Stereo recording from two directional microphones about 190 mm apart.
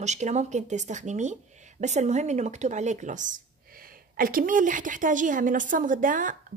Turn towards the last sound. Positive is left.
turn(degrees=-45)  # may be behind; listen again after turning